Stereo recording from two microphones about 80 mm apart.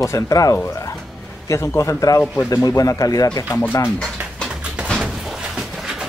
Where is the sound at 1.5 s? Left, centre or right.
Left.